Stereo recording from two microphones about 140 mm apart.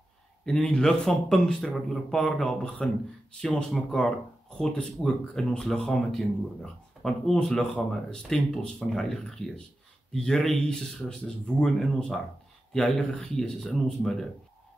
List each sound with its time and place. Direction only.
0.5 s speech: 5° left (ahead or behind)